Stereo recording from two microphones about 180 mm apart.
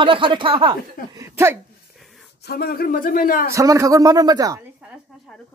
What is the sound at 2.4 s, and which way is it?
Speech, 60° left (ahead or behind).